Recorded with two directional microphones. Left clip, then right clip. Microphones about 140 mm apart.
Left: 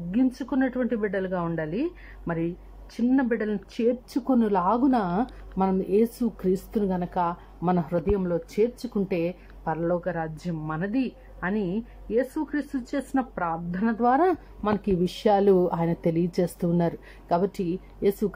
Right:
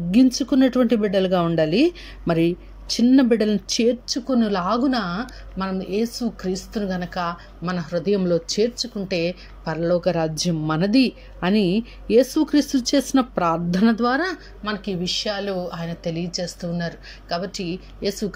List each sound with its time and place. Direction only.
0.1 s speech: 15° right (ahead or behind)
4.1 s a woman's voice: 20° left (ahead or behind)
8.0 s speech: 5° left (ahead or behind)
9.7 s speech: 10° left (ahead or behind)
9.9 s speech: 10° right (ahead or behind)
14.0 s speech: 15° left (ahead or behind)
14.6 s a woman's voice: 40° left (ahead or behind)
15.0 s a woman's voice: 55° left (ahead or behind); by 18.1 s 40° left (ahead or behind)